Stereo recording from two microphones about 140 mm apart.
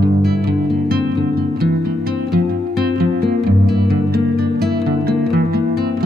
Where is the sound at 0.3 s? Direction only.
90° right.